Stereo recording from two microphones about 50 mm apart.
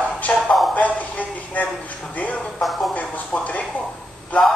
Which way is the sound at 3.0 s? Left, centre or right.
Left.